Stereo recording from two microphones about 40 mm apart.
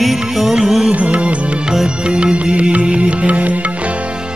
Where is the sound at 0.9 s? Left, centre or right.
Right.